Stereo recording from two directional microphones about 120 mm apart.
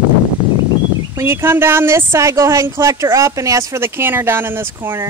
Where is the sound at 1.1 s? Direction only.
20° right (ahead or behind).